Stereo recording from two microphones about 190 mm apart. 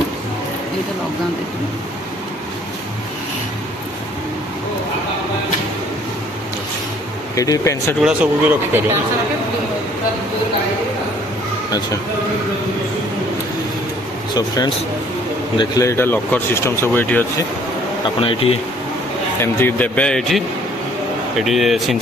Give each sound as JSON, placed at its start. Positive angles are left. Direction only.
{"t": 7.3, "sound": "speech", "side_deg": 20}
{"t": 8.0, "sound": "speech", "side_deg": -5}
{"t": 14.3, "sound": "a man's voice", "side_deg": 20}
{"t": 18.0, "sound": "a man's voice", "side_deg": 30}
{"t": 19.4, "sound": "a man's voice", "side_deg": 10}